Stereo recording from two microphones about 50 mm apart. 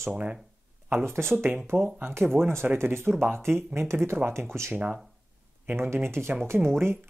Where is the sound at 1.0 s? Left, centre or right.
Right.